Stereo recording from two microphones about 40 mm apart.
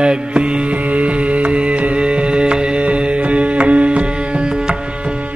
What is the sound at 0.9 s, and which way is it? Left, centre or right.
Music, right.